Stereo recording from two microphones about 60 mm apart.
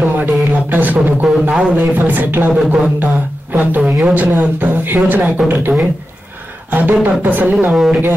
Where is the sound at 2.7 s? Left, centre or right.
Right.